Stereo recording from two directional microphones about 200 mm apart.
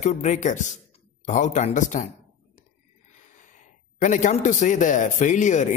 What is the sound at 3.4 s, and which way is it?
A man's voice, 40° left (ahead or behind).